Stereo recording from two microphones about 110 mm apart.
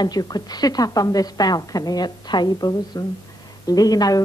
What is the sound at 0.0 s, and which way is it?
A woman's voice, 35° left (ahead or behind).